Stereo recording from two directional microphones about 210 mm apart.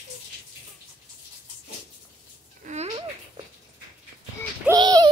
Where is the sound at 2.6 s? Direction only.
30° right (ahead or behind).